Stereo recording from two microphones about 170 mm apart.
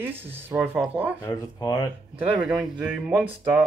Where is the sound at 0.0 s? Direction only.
10° right (ahead or behind).